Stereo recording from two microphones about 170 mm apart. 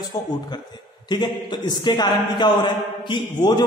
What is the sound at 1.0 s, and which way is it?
A man's voice, 25° left (ahead or behind).